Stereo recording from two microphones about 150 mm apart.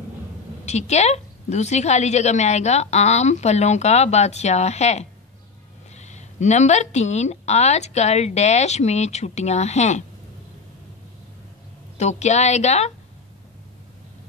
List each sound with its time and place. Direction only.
0.7 s a woman's voice: 50° left (ahead or behind)
12.0 s a woman's voice: 50° left (ahead or behind)